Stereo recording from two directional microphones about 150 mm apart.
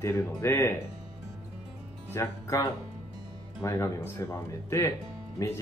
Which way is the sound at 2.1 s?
20° left (ahead or behind).